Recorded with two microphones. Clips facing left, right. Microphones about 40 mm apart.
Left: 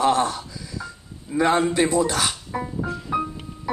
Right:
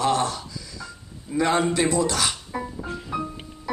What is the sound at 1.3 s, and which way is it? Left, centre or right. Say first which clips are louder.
Speech: left 2 dB; centre.